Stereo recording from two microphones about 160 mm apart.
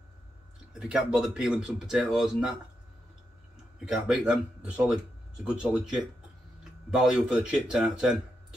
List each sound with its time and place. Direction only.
0.7 s speech: 5° right (ahead or behind)
3.8 s speech: 5° right (ahead or behind)